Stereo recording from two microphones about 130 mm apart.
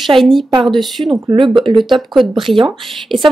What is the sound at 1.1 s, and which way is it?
Speech, 35° right (ahead or behind).